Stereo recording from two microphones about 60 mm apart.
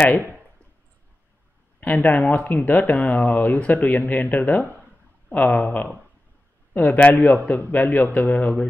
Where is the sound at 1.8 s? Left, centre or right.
Left.